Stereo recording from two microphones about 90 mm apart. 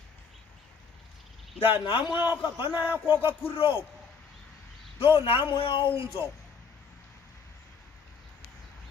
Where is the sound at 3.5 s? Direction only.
85° left.